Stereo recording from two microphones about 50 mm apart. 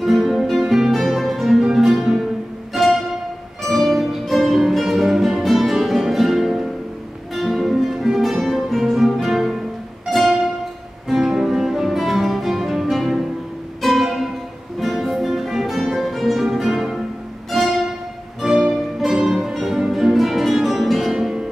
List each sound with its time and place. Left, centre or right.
0.0 s music: centre
11.1 s music: centre